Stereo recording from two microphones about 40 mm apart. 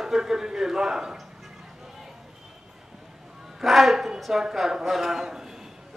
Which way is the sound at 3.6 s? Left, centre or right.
Centre.